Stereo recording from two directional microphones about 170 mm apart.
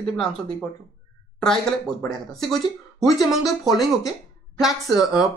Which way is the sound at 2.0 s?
Centre (ahead or behind).